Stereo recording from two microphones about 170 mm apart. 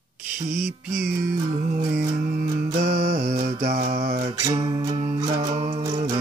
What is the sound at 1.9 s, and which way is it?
Music, 65° right (ahead or behind).